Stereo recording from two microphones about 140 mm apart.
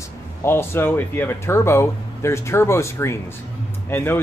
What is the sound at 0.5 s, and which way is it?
Speech, 15° left (ahead or behind).